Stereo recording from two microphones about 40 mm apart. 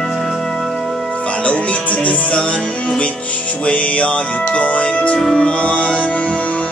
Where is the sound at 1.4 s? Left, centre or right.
Left.